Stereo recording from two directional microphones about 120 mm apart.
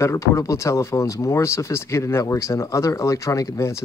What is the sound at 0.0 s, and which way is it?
Speech, 25° left (ahead or behind).